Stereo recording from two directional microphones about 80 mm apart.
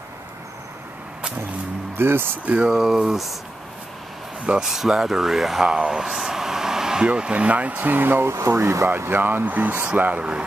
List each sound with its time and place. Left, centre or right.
2.0 s speech: right
2.4 s speech: centre
4.5 s speech: centre; by 8.9 s right
8.9 s speech: right